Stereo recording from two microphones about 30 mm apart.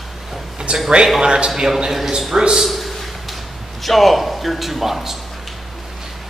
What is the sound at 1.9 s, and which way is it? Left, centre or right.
Speech, centre.